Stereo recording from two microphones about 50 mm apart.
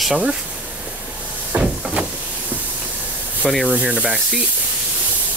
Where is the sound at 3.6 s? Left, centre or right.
Right.